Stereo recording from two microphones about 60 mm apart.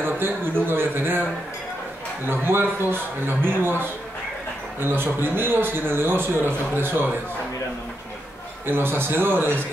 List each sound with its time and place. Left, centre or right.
0.0 s speech: right
2.2 s speech: right
8.6 s speech: right